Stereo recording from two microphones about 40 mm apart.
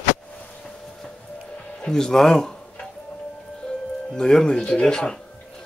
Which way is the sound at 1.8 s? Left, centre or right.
Centre.